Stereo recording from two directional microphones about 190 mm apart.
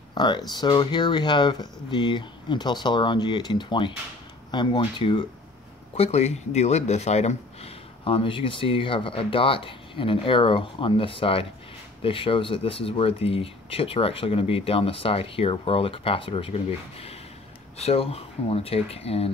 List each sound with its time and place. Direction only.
0.1 s speech: 20° left (ahead or behind)